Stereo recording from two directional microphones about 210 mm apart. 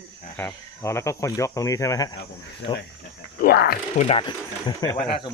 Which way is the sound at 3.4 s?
45° left (ahead or behind).